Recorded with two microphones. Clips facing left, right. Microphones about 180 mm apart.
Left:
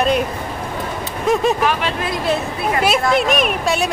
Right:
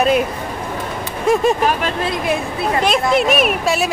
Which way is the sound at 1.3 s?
Centre (ahead or behind).